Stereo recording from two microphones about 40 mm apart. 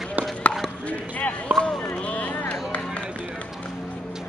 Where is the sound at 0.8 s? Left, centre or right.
Left.